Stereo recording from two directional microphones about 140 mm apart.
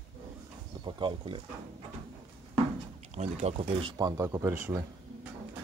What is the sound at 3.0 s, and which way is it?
Speech, 50° right (ahead or behind).